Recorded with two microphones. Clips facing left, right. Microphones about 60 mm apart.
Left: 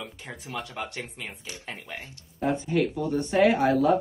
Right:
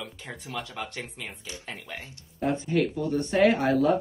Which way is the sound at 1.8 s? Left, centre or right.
Left.